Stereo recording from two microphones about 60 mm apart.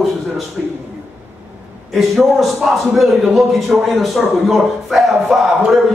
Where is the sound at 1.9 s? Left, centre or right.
Centre.